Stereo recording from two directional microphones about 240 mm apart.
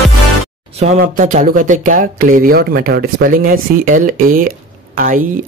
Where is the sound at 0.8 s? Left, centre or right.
Right.